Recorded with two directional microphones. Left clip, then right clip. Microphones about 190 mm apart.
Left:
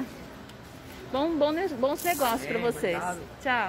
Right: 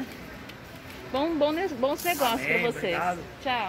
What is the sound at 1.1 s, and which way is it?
Speech, 10° left (ahead or behind).